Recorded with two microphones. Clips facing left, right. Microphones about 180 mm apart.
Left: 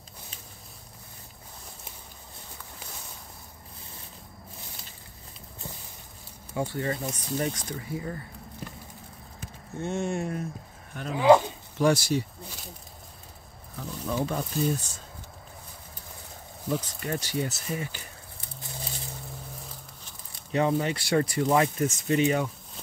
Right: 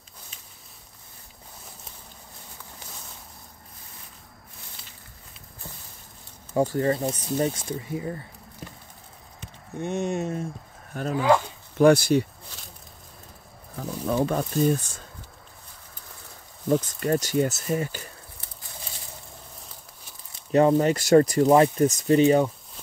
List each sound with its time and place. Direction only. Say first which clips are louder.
6.5 s speech: right 7 dB; 40° right (ahead or behind); by 8.2 s 25° right (ahead or behind)
9.8 s speech: right 2 dB; 20° right (ahead or behind)
11.1 s speech: left 3 dB; 20° left (ahead or behind)
11.8 s speech: right 6 dB; 60° right (ahead or behind)
13.7 s a sound: right 5 dB; 50° right (ahead or behind)
16.6 s speech: right 7 dB; 45° right (ahead or behind)
20.5 s speech: right 7 dB; 40° right (ahead or behind)